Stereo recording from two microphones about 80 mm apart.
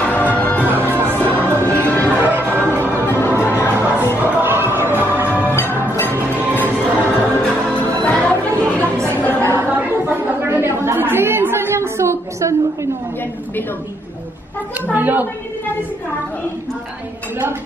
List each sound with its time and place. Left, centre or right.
0.0 s music: centre
0.7 s music: right
1.1 s music: left
1.4 s music: right
3.1 s music: left
3.7 s music: right
4.2 s a sound: right
4.7 s music: right
7.4 s music: centre
8.7 s chatter: right
14.9 s a sound: right